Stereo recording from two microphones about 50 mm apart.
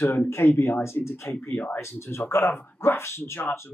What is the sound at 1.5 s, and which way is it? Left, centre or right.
Speech, left.